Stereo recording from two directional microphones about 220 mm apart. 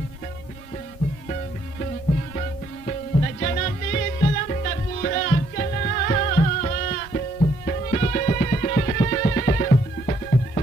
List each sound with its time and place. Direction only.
3.3 s music: 35° left (ahead or behind)